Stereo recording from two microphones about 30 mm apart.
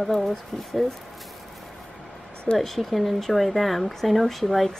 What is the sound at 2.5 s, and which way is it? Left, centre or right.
Speech, centre.